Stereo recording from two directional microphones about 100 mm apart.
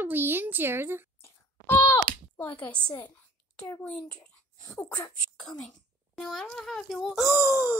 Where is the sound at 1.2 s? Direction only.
20° left (ahead or behind).